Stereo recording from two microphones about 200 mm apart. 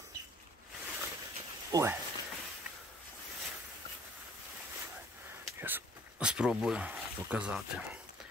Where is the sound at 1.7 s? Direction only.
15° right (ahead or behind).